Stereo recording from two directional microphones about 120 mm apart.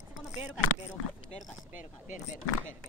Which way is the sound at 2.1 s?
90° left.